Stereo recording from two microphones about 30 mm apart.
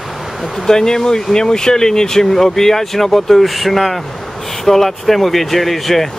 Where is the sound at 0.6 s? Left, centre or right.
Centre.